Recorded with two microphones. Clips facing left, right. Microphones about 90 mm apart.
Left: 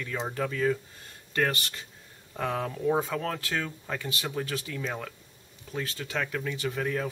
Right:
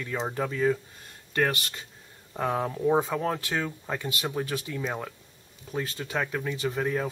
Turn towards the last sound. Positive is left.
turn(degrees=-15)  # may be behind; listen again after turning